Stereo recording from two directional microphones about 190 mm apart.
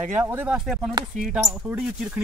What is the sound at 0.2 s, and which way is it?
Speech, 10° right (ahead or behind).